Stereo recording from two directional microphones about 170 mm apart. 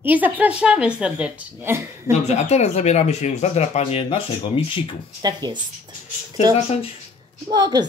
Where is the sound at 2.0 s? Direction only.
40° left (ahead or behind).